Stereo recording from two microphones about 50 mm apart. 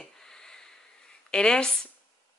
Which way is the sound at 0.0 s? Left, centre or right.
Centre.